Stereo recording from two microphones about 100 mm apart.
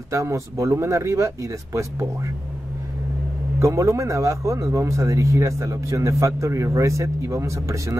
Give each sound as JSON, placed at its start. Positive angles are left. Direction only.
{"t": 0.1, "sound": "speech", "side_deg": -30}
{"t": 3.5, "sound": "speech", "side_deg": -30}